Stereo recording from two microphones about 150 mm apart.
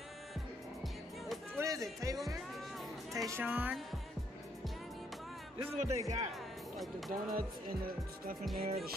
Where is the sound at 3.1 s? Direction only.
20° right (ahead or behind).